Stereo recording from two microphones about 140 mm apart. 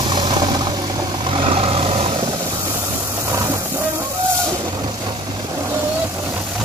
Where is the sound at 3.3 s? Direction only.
20° right (ahead or behind).